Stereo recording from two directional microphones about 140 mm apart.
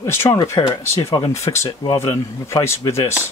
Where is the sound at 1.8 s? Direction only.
30° left (ahead or behind).